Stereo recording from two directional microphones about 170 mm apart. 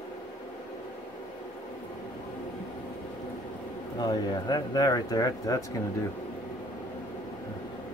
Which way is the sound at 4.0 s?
25° left (ahead or behind).